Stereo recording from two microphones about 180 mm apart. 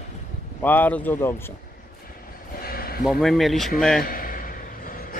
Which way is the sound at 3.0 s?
Centre (ahead or behind).